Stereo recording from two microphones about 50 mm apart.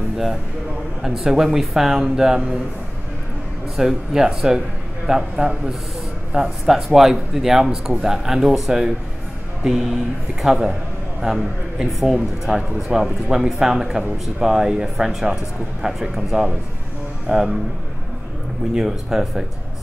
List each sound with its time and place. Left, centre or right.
1.0 s a man's voice: centre
3.7 s a man's voice: centre
6.7 s a man's voice: centre
17.3 s a man's voice: centre
18.8 s a man's voice: centre